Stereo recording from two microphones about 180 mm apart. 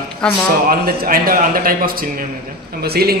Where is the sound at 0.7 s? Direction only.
55° right (ahead or behind).